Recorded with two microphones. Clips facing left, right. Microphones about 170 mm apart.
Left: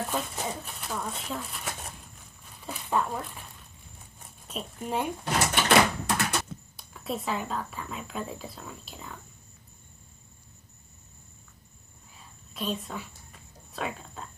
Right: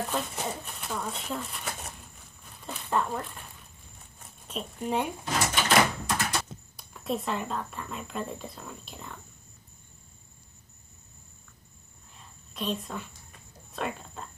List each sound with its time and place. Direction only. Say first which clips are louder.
0.1 s speech: even; centre (ahead or behind)
2.4 s dog: left 1 dB; 5° left (ahead or behind)
4.5 s speech: right 2 dB; centre (ahead or behind)
5.2 s a sound: left 2 dB; 65° left (ahead or behind)
6.8 s speech: right 2 dB; centre (ahead or behind)
12.2 s a sound: even; centre (ahead or behind)
13.7 s speech: right 1 dB; centre (ahead or behind)